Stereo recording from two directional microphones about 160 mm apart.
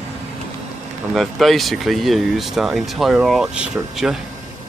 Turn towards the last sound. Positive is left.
turn(degrees=-5)  # may be behind; listen again after turning